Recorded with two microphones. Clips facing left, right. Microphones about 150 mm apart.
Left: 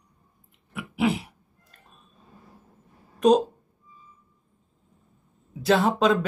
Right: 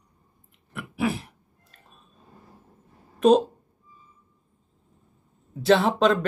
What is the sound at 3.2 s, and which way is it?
Speech, centre (ahead or behind).